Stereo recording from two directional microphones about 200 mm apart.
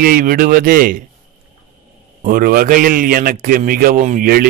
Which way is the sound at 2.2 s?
45° right (ahead or behind).